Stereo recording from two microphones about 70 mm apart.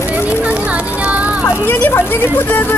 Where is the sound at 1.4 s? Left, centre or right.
Left.